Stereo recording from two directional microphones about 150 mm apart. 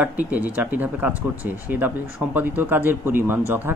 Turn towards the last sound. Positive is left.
turn(degrees=-15)  # may be behind; listen again after turning